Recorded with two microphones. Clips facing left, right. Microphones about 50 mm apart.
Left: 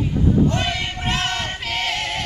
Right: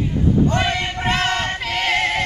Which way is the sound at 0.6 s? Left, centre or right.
Centre.